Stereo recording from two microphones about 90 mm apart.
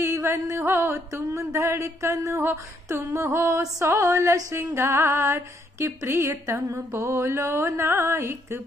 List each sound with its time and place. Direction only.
0.0 s music: 30° right (ahead or behind)
4.6 s female singing: 30° right (ahead or behind)